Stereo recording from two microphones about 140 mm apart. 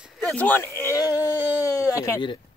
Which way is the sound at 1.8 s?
20° left (ahead or behind).